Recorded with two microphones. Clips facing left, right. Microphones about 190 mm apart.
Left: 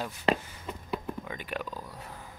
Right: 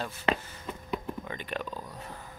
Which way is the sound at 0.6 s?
5° left (ahead or behind).